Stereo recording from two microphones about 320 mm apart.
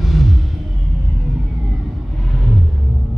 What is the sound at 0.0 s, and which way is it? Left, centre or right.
Music, centre.